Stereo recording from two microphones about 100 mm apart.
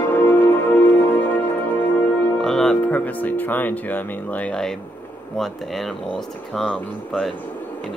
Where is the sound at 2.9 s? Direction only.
15° left (ahead or behind).